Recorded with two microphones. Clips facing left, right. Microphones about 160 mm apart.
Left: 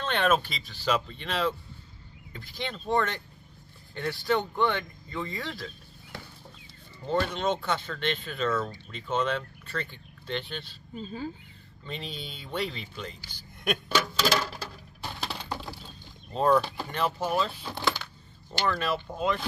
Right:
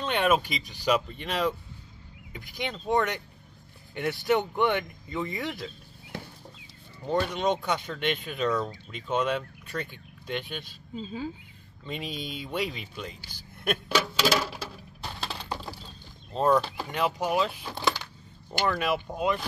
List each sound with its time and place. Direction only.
0.0 s speech: 10° right (ahead or behind)
7.1 s speech: 10° right (ahead or behind)
16.3 s speech: 5° right (ahead or behind)